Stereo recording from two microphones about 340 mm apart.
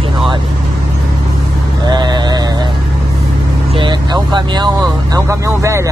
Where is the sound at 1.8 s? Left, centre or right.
Centre.